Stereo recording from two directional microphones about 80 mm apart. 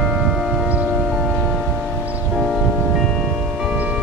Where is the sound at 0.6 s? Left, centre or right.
Centre.